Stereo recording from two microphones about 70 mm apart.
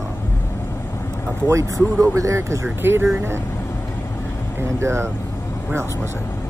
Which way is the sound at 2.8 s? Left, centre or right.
Right.